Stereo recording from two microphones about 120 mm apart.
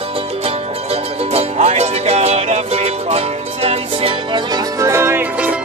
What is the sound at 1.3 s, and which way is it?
Music, 65° right (ahead or behind).